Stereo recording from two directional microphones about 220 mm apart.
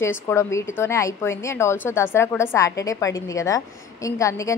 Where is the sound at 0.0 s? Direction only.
10° left (ahead or behind).